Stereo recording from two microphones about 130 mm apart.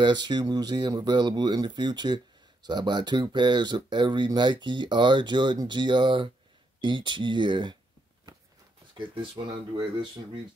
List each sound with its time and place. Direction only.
0.0 s speech: 35° right (ahead or behind)
9.1 s speech: 40° right (ahead or behind)